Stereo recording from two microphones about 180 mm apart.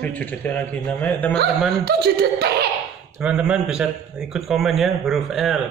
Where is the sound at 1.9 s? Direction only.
65° right (ahead or behind).